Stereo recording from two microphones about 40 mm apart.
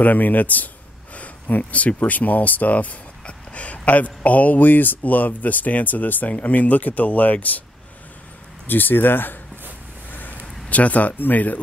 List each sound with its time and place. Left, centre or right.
0.0 s speech: left
8.6 s speech: left
10.7 s speech: left